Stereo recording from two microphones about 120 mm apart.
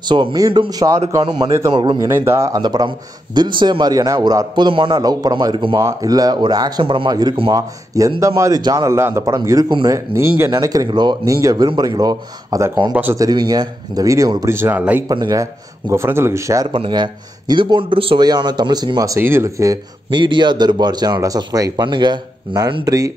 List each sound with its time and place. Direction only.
0.1 s a man's voice: 40° right (ahead or behind)
2.0 s a man's voice: 20° right (ahead or behind); by 5.8 s 40° right (ahead or behind)
5.8 s a man's voice: 30° right (ahead or behind)
6.8 s speech: 50° right (ahead or behind)
7.1 s a man's voice: 35° right (ahead or behind)
10.5 s a man's voice: 30° right (ahead or behind); by 15.0 s 15° right (ahead or behind)
15.0 s a man's voice: 30° right (ahead or behind)
15.9 s a man's voice: 20° right (ahead or behind)
16.7 s speech: 45° right (ahead or behind)
18.2 s a man's voice: 35° right (ahead or behind)
20.1 s a man's voice: 40° right (ahead or behind)
22.8 s a man's voice: 30° right (ahead or behind)